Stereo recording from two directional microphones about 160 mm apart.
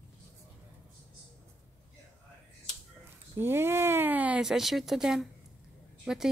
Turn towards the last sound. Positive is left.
turn(degrees=-5)  # may be behind; listen again after turning